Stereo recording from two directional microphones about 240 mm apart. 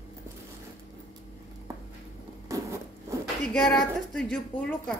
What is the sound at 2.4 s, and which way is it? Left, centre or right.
Patter, centre.